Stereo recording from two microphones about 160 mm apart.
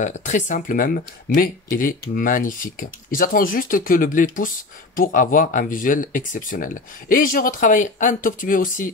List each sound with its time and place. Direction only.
0.0 s speech: 50° left (ahead or behind)